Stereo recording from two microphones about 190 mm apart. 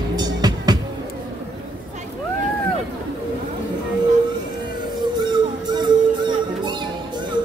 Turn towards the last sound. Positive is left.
turn(degrees=-25)  # may be behind; listen again after turning